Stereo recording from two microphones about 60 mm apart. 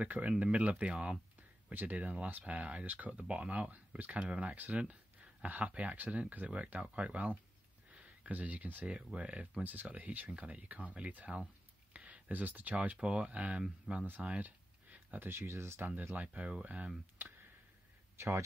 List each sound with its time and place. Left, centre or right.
0.0 s speech: right
1.7 s speech: right
7.9 s a sound: right
8.8 s speech: centre
11.9 s a sound: right
12.8 s speech: centre
14.2 s a sound: right
15.2 s speech: right
15.8 s speech: right
16.3 s speech: right
18.1 s speech: right